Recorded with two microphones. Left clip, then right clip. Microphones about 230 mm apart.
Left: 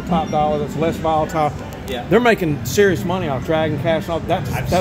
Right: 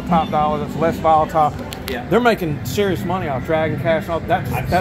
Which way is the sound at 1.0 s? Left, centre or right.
Left.